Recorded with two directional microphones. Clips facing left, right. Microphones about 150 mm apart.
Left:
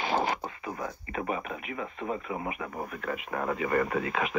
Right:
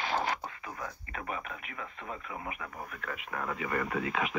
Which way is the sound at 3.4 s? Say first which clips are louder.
Left 6 dB; 40° left (ahead or behind).